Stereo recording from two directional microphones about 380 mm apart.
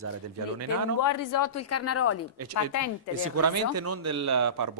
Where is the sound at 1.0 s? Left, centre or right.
Left.